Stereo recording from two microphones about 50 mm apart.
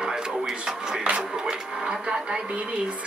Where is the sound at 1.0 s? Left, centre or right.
Centre.